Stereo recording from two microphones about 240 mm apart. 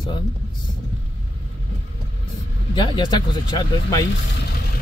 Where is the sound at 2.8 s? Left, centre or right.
Centre.